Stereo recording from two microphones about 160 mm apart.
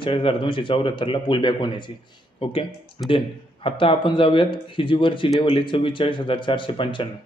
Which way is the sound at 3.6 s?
30° left (ahead or behind).